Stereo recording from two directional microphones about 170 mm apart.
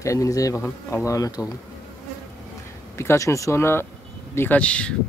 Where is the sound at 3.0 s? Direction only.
15° left (ahead or behind).